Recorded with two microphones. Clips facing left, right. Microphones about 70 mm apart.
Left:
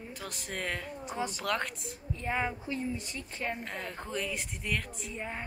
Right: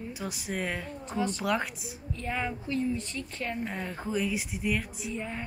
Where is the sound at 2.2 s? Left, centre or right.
Centre.